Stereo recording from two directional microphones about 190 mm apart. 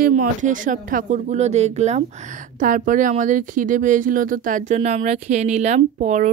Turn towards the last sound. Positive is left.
turn(degrees=-40)  # may be behind; listen again after turning